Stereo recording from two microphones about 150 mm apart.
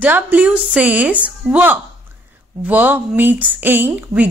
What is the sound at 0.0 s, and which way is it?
A woman's voice, 10° right (ahead or behind).